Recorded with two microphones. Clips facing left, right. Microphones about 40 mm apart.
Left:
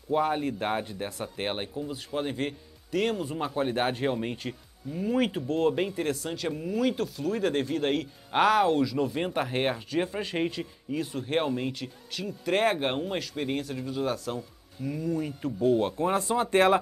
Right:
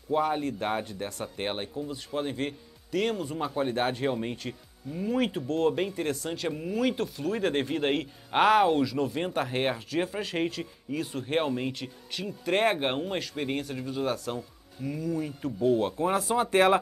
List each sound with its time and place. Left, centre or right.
0.1 s speech: centre
8.9 s speech: centre